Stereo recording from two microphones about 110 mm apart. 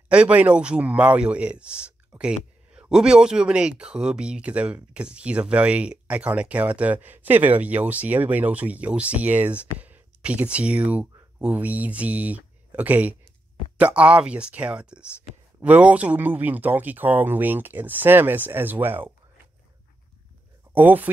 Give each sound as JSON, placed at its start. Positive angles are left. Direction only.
{"t": 0.1, "sound": "a man's voice", "side_deg": -10}
{"t": 20.7, "sound": "a man's voice", "side_deg": -15}